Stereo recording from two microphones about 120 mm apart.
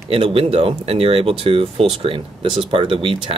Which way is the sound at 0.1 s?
50° right (ahead or behind).